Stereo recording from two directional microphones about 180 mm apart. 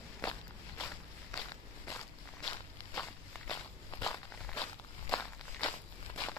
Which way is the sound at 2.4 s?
10° left (ahead or behind).